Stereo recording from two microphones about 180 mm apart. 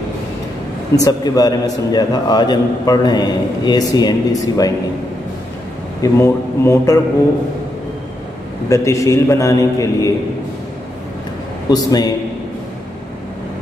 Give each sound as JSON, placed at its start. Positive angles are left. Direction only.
{"t": 0.9, "sound": "a man's voice", "side_deg": 20}
{"t": 6.1, "sound": "a man's voice", "side_deg": 15}
{"t": 8.6, "sound": "a man's voice", "side_deg": 15}
{"t": 11.7, "sound": "a man's voice", "side_deg": 20}